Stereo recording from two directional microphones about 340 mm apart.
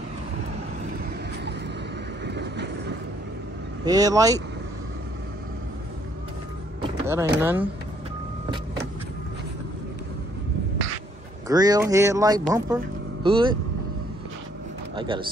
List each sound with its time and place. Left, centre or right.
2.2 s vehicle: right
3.8 s speech: centre
6.8 s speech: centre
11.4 s speech: centre
15.0 s speech: centre